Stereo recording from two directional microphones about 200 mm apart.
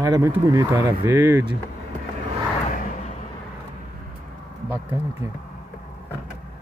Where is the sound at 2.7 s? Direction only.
40° left (ahead or behind).